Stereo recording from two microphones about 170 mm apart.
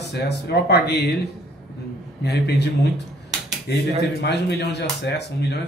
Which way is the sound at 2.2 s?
75° left (ahead or behind).